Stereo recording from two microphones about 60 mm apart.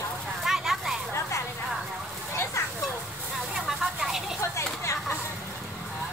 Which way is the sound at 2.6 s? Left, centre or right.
Left.